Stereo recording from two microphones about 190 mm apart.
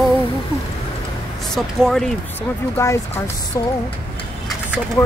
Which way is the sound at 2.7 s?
15° left (ahead or behind).